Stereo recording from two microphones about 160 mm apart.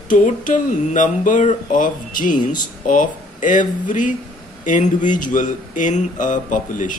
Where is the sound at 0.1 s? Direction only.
55° left (ahead or behind).